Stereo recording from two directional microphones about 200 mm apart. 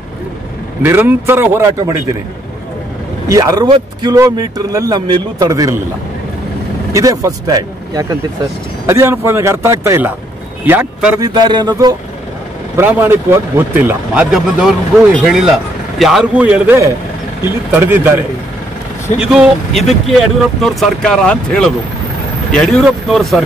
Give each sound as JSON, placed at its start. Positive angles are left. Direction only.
{"t": 0.8, "sound": "speech", "side_deg": -10}
{"t": 3.3, "sound": "speech", "side_deg": -15}
{"t": 6.9, "sound": "speech", "side_deg": -15}
{"t": 11.1, "sound": "a man's voice", "side_deg": -20}
{"t": 12.7, "sound": "speech", "side_deg": -10}
{"t": 19.3, "sound": "speech", "side_deg": 0}